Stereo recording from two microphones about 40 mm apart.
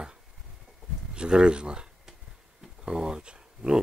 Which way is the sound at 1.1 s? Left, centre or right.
Right.